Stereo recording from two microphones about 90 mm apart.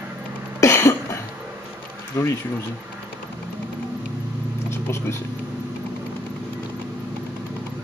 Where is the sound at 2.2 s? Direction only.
35° left (ahead or behind).